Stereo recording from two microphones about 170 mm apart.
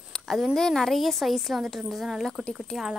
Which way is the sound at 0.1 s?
Centre (ahead or behind).